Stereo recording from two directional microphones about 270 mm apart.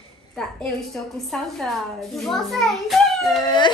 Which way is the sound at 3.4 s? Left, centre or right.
Centre.